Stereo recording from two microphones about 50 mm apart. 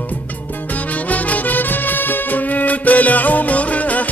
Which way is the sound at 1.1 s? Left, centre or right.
Left.